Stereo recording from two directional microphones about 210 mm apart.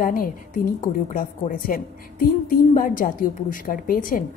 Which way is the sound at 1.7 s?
45° left (ahead or behind).